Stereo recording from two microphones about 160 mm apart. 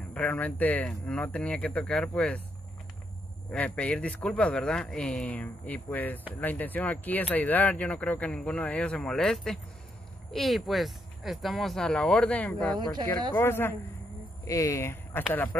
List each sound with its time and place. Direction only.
0.1 s speech: 10° left (ahead or behind)
3.5 s speech: 10° left (ahead or behind)